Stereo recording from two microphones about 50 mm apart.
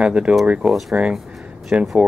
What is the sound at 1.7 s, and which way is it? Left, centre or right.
Speech, right.